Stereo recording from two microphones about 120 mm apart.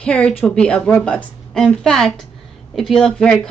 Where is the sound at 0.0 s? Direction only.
10° left (ahead or behind).